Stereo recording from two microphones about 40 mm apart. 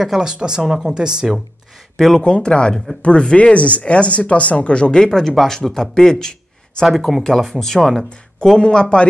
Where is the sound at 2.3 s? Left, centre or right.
Left.